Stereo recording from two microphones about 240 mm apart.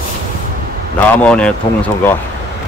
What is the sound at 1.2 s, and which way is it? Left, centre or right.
A man's voice, centre.